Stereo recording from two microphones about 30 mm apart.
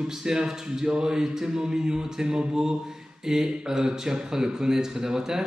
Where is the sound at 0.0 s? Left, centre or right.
Right.